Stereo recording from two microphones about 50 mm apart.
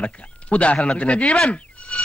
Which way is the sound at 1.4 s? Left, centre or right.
Left.